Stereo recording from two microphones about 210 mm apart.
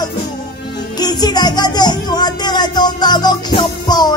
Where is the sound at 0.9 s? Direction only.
20° left (ahead or behind).